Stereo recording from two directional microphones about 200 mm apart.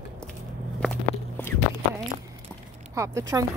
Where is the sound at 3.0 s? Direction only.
15° right (ahead or behind).